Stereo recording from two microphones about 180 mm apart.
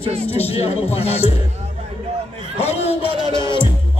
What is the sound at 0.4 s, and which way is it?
Speech, 35° left (ahead or behind).